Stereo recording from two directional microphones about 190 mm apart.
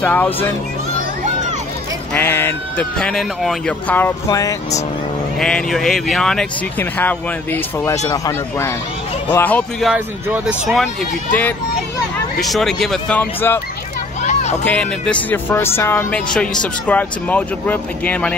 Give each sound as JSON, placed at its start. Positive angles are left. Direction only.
{"t": 0.0, "sound": "speech", "side_deg": 10}
{"t": 2.1, "sound": "speech", "side_deg": 10}
{"t": 5.4, "sound": "speech", "side_deg": 5}
{"t": 12.4, "sound": "speech", "side_deg": 0}
{"t": 14.2, "sound": "a sound", "side_deg": 35}
{"t": 14.6, "sound": "speech", "side_deg": 5}